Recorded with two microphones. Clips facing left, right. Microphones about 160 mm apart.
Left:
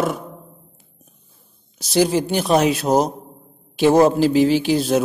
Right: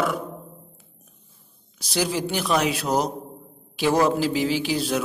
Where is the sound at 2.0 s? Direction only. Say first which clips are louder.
Left 6 dB; 45° left (ahead or behind).